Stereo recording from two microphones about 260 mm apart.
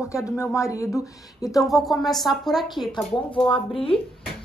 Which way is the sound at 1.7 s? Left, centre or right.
Centre.